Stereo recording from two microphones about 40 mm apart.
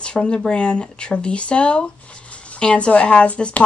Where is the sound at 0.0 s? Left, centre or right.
Left.